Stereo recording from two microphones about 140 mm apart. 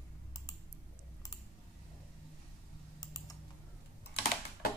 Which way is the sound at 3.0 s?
25° left (ahead or behind).